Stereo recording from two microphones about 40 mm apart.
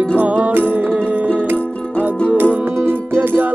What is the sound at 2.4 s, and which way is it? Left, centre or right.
Music, right.